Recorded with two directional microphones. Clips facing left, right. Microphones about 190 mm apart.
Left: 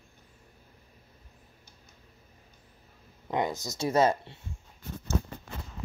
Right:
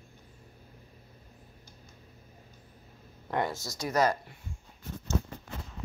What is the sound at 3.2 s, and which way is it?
Speech, 15° left (ahead or behind).